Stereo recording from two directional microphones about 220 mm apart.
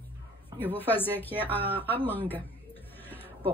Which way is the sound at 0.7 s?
10° left (ahead or behind).